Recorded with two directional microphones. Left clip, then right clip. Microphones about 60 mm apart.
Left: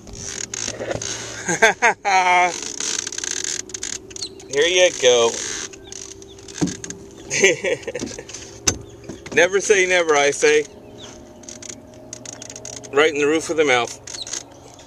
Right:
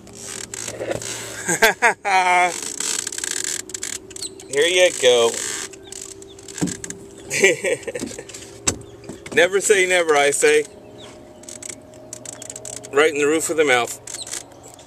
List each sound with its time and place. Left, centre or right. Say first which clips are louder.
0.3 s vehicle: left 4 dB; left
0.9 s a sound: left 1 dB; left
1.3 s speech: left 1 dB; centre
2.6 s vehicle: left 1 dB; centre
6.5 s vehicle: left 2 dB; left
9.3 s speech: even; centre
11.6 s a sound: even; centre
14.1 s vehicle: left 2 dB; centre